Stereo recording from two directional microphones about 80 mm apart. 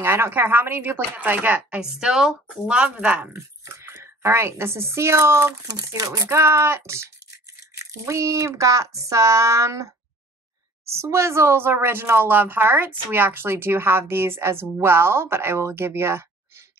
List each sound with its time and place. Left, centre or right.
0.0 s speech: right
1.8 s speech: centre
2.6 s speech: centre
3.3 s speech: right
5.7 s speech: right
6.2 s a woman's voice: right
10.9 s a woman's voice: right